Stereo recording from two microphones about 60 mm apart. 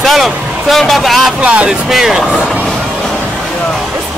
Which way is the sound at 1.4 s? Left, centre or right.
Right.